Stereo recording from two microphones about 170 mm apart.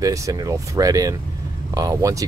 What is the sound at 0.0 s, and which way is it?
Speech, 20° right (ahead or behind).